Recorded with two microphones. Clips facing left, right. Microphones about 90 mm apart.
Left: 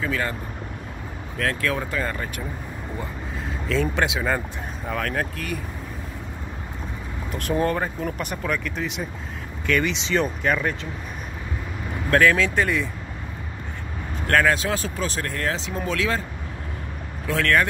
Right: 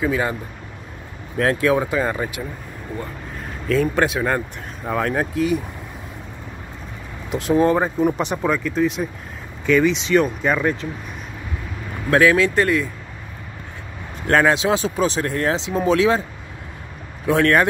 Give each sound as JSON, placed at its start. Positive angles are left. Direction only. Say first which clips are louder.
{"t": 0.0, "sound": "speech", "louder": "right 5 dB", "side_deg": -15}
{"t": 1.4, "sound": "speech", "louder": "right 7 dB", "side_deg": -25}
{"t": 1.8, "sound": "speech", "louder": "right 6 dB", "side_deg": -15}
{"t": 3.6, "sound": "speech", "louder": "right 5 dB", "side_deg": -5}
{"t": 4.8, "sound": "speech", "louder": "right 5 dB", "side_deg": -15}
{"t": 7.5, "sound": "speech", "louder": "right 7 dB", "side_deg": -10}
{"t": 12.1, "sound": "speech", "louder": "right 3 dB", "side_deg": -5}
{"t": 14.2, "sound": "speech", "louder": "right 4 dB", "side_deg": -20}
{"t": 17.3, "sound": "speech", "louder": "right 5 dB", "side_deg": -25}